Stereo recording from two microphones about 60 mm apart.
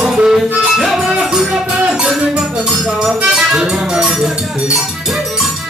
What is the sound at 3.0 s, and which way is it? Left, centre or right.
Speech, centre.